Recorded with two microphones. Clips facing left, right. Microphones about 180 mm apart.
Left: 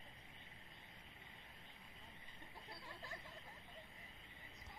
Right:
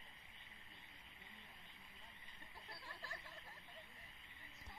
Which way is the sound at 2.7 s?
20° left (ahead or behind).